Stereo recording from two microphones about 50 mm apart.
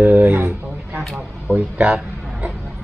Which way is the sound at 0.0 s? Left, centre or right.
Right.